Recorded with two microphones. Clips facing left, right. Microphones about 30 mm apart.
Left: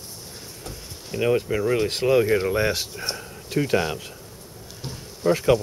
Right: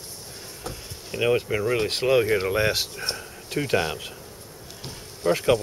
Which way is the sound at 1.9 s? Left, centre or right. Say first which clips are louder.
Left 1 dB; centre.